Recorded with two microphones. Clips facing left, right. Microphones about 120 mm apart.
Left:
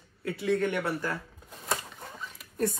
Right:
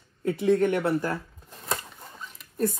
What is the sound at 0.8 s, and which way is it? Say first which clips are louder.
Speech: right 5 dB; 25° right (ahead or behind).